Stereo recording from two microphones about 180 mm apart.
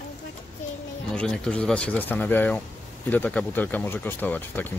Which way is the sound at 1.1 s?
5° left (ahead or behind).